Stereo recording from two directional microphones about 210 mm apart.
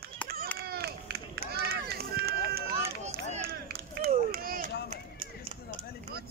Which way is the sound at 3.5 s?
50° right (ahead or behind).